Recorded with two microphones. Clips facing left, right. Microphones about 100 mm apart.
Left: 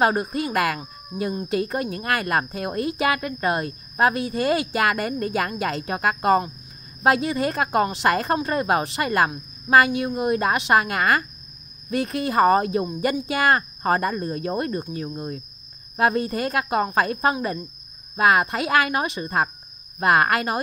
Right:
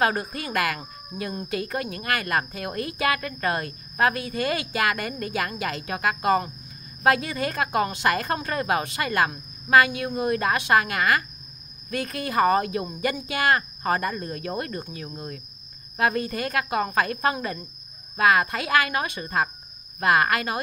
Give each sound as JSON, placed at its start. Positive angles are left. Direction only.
{"t": 0.0, "sound": "a woman's voice", "side_deg": 30}